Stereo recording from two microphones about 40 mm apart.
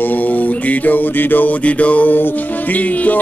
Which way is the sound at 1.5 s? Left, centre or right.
Left.